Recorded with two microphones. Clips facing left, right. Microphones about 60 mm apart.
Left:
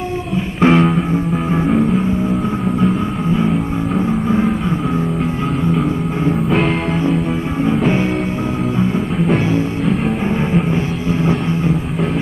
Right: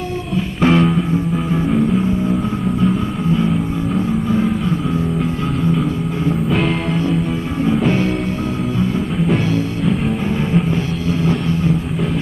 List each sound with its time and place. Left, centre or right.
0.6 s music: centre
4.3 s music: left
7.6 s music: centre
11.1 s music: left